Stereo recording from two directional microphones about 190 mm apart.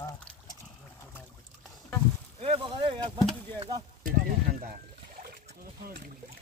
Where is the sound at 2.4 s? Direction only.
30° right (ahead or behind).